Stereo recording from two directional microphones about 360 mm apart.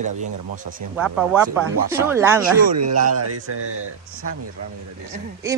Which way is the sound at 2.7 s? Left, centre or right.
Right.